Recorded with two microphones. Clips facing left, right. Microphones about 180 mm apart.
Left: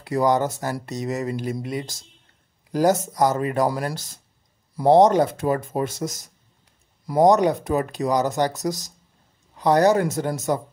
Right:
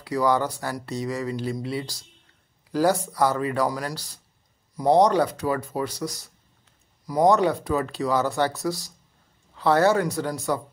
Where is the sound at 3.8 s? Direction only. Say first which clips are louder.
Left 3 dB; 45° left (ahead or behind).